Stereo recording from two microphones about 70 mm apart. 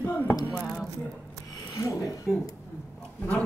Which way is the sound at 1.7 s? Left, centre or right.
Left.